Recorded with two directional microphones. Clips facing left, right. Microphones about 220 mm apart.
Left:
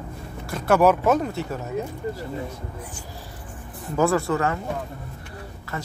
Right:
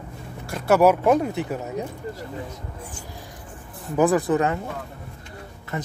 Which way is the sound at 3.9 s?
15° right (ahead or behind).